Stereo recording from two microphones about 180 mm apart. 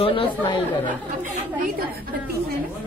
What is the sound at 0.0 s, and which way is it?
Speech, 30° left (ahead or behind).